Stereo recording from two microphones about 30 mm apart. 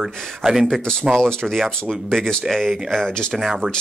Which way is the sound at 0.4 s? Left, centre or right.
Centre.